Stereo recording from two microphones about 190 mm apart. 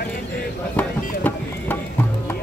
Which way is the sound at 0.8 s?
10° left (ahead or behind).